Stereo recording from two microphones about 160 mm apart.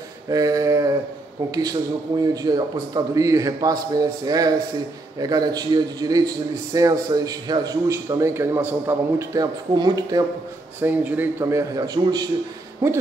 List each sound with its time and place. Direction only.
0.3 s mantra: 20° right (ahead or behind)
1.5 s a man's voice: 20° right (ahead or behind)
10.8 s a man's voice: 10° right (ahead or behind)